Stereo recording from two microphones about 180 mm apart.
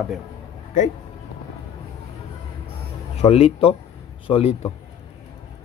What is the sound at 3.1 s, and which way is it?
Speech, 35° left (ahead or behind).